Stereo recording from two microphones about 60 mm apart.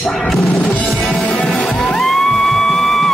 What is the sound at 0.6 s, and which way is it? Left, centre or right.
Music, left.